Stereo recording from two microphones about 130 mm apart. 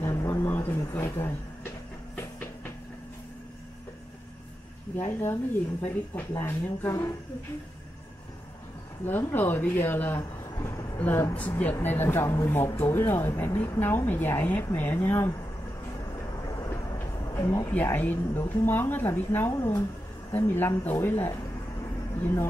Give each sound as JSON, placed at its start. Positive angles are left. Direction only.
{"t": 0.0, "sound": "a sound", "side_deg": 20}
{"t": 4.9, "sound": "speech", "side_deg": 20}
{"t": 9.0, "sound": "speech", "side_deg": 15}
{"t": 10.5, "sound": "a sound", "side_deg": 25}
{"t": 11.0, "sound": "speech", "side_deg": 15}
{"t": 16.1, "sound": "speech", "side_deg": 30}
{"t": 21.3, "sound": "vehicle", "side_deg": 30}
{"t": 22.2, "sound": "speech", "side_deg": 20}